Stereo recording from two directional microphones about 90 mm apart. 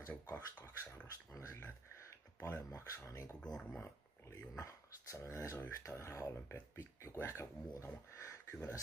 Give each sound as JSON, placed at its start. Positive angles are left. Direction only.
{"t": 0.1, "sound": "speech", "side_deg": 20}
{"t": 3.3, "sound": "speech", "side_deg": 10}
{"t": 3.8, "sound": "speech", "side_deg": 30}